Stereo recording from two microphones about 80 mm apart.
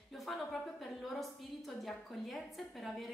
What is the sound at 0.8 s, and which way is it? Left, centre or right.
A woman's voice, centre.